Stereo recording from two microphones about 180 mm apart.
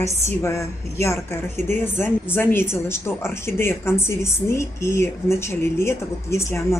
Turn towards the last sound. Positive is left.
turn(degrees=15)  # may be behind; listen again after turning